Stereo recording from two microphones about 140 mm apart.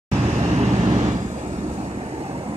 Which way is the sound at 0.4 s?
50° right (ahead or behind).